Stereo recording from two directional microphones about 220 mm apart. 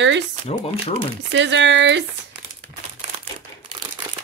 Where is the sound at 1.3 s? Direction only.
55° right (ahead or behind).